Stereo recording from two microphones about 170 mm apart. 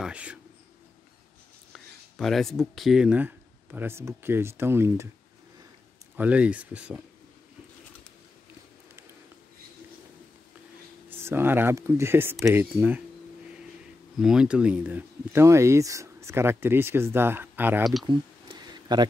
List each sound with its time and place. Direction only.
0.0 s speech: 5° right (ahead or behind)
1.7 s speech: centre (ahead or behind); by 5.1 s 15° right (ahead or behind)
6.1 s speech: 10° right (ahead or behind)
11.1 s speech: 15° right (ahead or behind)
14.1 s speech: 5° right (ahead or behind)
18.0 s a sound: 25° right (ahead or behind)